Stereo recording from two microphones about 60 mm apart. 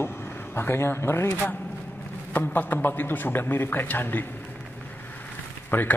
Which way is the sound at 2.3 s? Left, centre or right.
Left.